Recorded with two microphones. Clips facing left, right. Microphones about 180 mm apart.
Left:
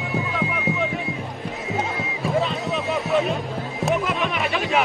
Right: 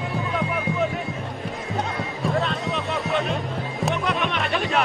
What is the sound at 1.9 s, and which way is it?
Music, centre (ahead or behind).